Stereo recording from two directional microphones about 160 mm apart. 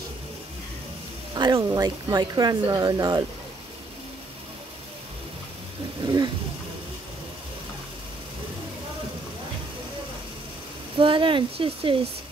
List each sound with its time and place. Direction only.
1.3 s speech: 25° right (ahead or behind)
6.0 s roaring cats: 25° right (ahead or behind)
11.0 s speech: 30° right (ahead or behind)